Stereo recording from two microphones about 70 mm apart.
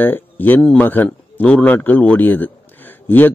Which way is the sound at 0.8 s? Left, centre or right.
Left.